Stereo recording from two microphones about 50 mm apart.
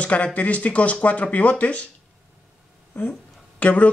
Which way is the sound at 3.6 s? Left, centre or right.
Left.